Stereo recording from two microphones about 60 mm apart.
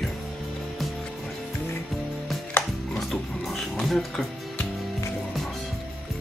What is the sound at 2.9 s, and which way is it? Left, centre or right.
Music, centre.